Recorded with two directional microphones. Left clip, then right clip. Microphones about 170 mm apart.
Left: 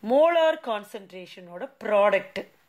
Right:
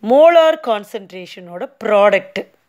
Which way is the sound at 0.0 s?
45° right (ahead or behind).